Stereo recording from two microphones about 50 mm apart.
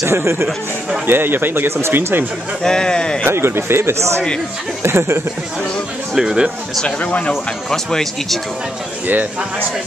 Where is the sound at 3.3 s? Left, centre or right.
Right.